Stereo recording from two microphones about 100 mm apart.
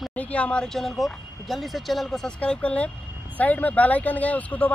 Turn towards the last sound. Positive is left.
turn(degrees=15)  # may be behind; listen again after turning